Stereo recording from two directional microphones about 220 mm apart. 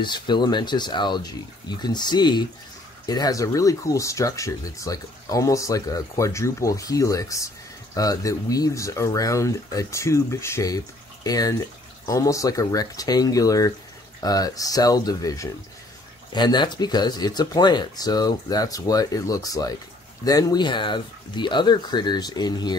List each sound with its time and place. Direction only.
0.0 s speech: 20° left (ahead or behind)